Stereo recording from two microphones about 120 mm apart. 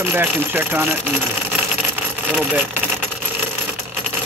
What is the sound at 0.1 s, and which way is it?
Speech, 15° right (ahead or behind).